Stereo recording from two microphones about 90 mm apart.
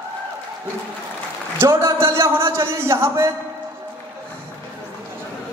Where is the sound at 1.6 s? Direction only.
30° right (ahead or behind).